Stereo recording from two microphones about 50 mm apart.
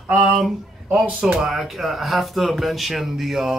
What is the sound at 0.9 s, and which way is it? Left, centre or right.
Speech, centre.